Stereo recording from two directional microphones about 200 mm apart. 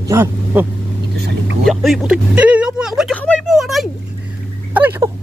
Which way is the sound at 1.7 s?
Centre (ahead or behind).